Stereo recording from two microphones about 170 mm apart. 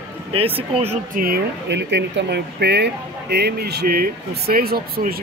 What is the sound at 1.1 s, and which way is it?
Speech, 65° right (ahead or behind).